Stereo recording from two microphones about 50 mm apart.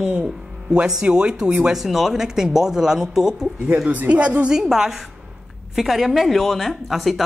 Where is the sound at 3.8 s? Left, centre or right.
Right.